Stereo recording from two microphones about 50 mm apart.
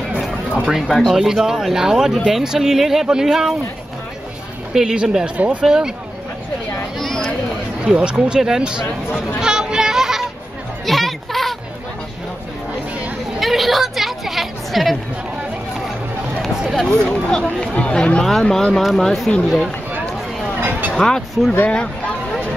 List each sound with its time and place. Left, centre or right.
0.6 s speech: centre
0.8 s speech: centre
1.1 s speech: centre
4.7 s speech: centre
5.4 s speech: right
5.7 s speech: centre
7.8 s speech: centre
8.8 s speech: left
9.4 s a sound: centre
10.9 s music: centre
13.4 s a sound: centre
16.9 s speech: centre
20.9 s speech: centre
21.6 s speech: left